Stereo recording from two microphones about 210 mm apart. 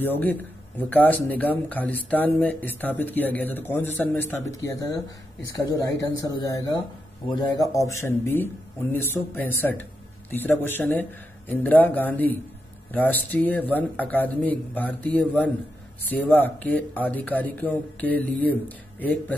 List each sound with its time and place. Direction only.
0.0 s speech: 10° left (ahead or behind)